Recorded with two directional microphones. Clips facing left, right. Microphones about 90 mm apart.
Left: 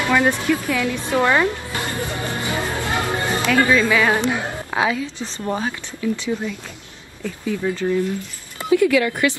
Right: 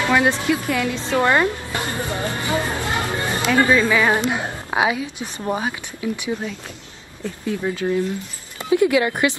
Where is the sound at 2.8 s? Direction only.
20° left (ahead or behind).